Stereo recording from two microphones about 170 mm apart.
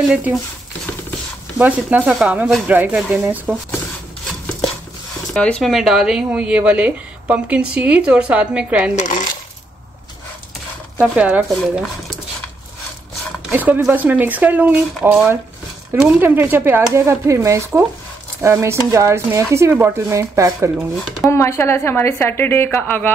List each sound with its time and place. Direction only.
0.1 s speech: 5° right (ahead or behind)
1.6 s speech: 10° right (ahead or behind)
4.3 s a sound: 5° left (ahead or behind)
5.3 s speech: 5° left (ahead or behind)
8.9 s coin: 50° left (ahead or behind)
11.1 s speech: 10° right (ahead or behind)
13.5 s speech: 10° right (ahead or behind)
21.3 s a woman's voice: 15° left (ahead or behind)